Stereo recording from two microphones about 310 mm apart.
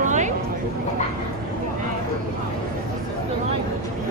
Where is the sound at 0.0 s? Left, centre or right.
Right.